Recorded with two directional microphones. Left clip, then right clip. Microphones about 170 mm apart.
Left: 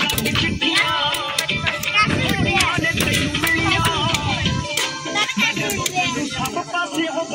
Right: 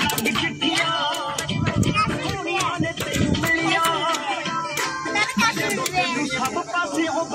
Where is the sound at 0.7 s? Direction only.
40° right (ahead or behind).